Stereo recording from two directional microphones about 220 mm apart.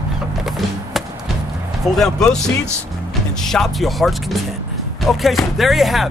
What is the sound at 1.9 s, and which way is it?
Speech, centre (ahead or behind).